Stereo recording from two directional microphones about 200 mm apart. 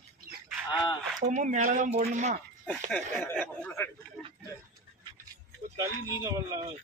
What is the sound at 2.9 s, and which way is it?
Speech, 10° left (ahead or behind).